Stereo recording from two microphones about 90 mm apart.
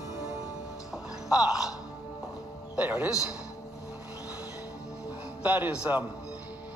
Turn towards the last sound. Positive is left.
turn(degrees=-15)  # may be behind; listen again after turning